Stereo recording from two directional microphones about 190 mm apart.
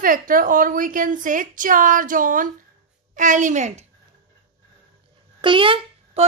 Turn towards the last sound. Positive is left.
turn(degrees=-25)  # may be behind; listen again after turning